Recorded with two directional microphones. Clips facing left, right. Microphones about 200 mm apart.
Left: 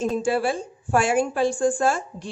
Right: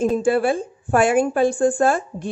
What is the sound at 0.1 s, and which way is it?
A woman's voice, 55° right (ahead or behind).